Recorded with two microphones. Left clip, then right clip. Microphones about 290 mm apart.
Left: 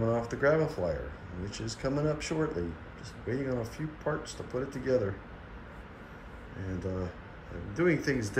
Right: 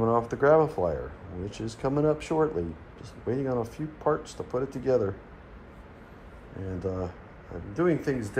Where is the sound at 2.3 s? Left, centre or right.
Centre.